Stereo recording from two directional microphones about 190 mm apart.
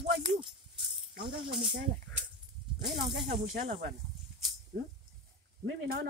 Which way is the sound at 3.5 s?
35° right (ahead or behind).